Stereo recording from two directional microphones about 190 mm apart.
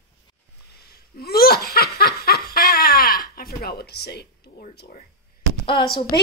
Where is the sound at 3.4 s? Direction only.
55° left (ahead or behind).